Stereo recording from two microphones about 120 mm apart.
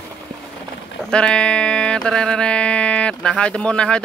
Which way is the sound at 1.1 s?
5° left (ahead or behind).